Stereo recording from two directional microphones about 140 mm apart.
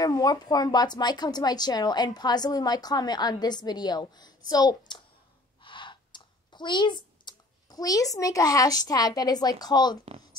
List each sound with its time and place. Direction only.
0.0 s speech: 25° left (ahead or behind)